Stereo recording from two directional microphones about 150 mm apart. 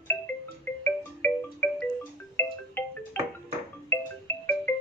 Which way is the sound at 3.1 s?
15° left (ahead or behind).